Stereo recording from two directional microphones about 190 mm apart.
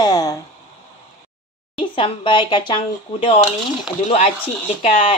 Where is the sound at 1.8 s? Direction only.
25° left (ahead or behind).